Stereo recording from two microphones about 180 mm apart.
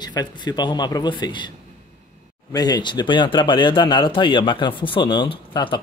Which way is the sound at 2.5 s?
20° left (ahead or behind).